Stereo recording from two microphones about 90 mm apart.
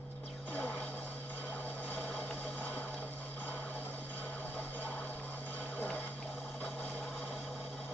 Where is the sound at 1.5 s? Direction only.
20° left (ahead or behind).